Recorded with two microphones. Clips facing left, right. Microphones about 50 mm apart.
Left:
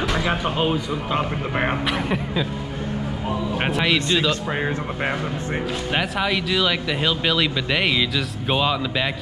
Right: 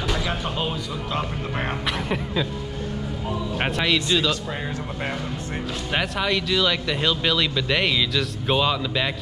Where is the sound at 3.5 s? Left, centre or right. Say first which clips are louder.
Left 1 dB; centre.